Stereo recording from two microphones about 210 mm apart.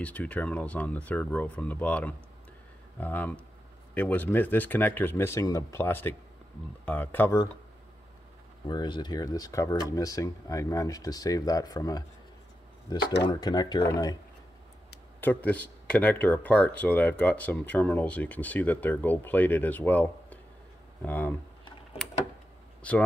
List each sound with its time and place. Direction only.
0.0 s speech: 5° left (ahead or behind)
8.6 s speech: 20° left (ahead or behind)
13.3 s speech: 20° left (ahead or behind)
15.1 s speech: 10° left (ahead or behind)
22.8 s speech: 5° left (ahead or behind)